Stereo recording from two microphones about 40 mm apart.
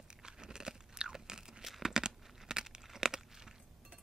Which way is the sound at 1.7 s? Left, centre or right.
Centre.